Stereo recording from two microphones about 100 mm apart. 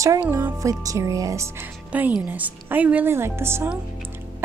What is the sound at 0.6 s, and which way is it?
A woman's voice, 35° right (ahead or behind).